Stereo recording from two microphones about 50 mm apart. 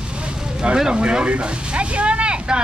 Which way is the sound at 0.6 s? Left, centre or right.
Centre.